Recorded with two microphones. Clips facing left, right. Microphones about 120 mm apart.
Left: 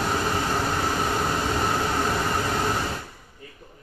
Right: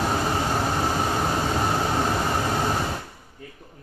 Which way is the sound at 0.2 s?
20° right (ahead or behind).